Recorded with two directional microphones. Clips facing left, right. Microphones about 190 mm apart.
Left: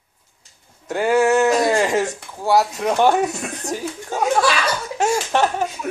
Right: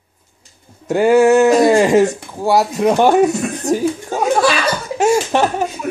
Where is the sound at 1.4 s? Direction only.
25° right (ahead or behind).